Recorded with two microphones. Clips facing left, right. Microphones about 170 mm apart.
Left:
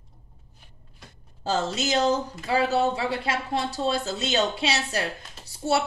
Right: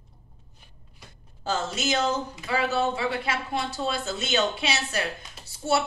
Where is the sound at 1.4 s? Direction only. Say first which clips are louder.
Left 2 dB; 35° left (ahead or behind).